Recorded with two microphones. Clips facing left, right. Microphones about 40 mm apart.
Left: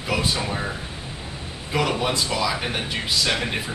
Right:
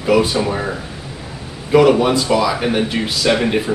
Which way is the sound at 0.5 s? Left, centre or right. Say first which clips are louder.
Right 6 dB; centre.